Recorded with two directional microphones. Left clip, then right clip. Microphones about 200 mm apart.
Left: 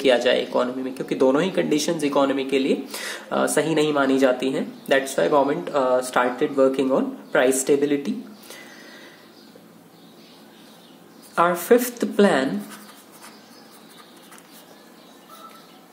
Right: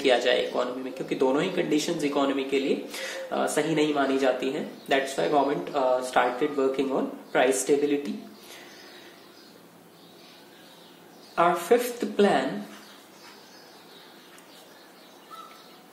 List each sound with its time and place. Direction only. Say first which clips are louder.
0.0 s speech: left 4 dB; 30° left (ahead or behind)
11.3 s speech: left 4 dB; 30° left (ahead or behind)